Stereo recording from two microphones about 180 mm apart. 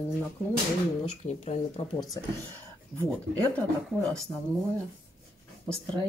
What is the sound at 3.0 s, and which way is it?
Speech, 5° left (ahead or behind).